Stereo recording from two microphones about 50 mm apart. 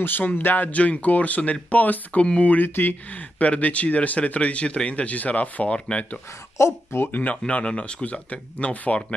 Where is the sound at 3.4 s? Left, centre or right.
Left.